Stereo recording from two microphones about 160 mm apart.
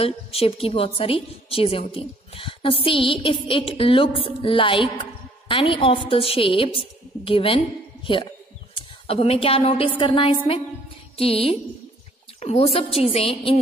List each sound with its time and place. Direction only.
0.0 s a woman's voice: 35° left (ahead or behind)